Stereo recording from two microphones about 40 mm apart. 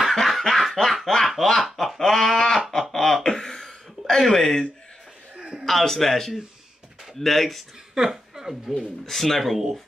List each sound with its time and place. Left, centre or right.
0.4 s snicker: centre
0.8 s speech: centre
1.4 s snicker: centre
1.9 s a sound: centre
2.8 s chuckle: centre
3.3 s a sound: centre
4.2 s speech: centre
5.4 s a sound: centre
5.7 s speech: centre
7.9 s speech: centre
8.7 s speech: centre